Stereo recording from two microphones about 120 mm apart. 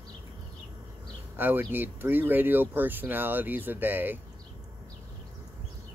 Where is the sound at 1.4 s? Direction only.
15° right (ahead or behind).